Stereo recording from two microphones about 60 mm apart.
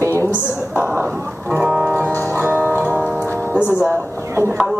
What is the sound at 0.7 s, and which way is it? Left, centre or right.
Speech, right.